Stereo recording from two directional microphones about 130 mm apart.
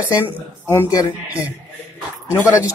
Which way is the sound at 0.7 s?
20° left (ahead or behind).